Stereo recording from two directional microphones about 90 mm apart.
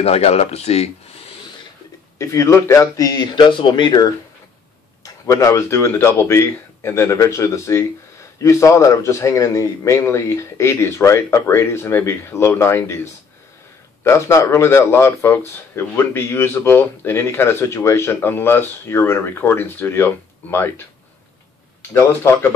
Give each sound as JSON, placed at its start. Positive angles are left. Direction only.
{"t": 2.1, "sound": "a man's voice", "side_deg": 35}
{"t": 3.3, "sound": "speech", "side_deg": 65}
{"t": 5.2, "sound": "a man's voice", "side_deg": 35}
{"t": 21.9, "sound": "speech", "side_deg": 30}